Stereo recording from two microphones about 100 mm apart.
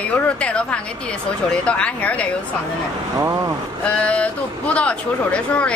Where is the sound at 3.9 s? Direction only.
10° left (ahead or behind).